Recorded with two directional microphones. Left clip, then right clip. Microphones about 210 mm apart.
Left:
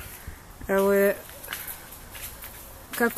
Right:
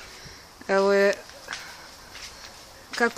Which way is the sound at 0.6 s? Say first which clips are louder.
Right 1 dB; 15° right (ahead or behind).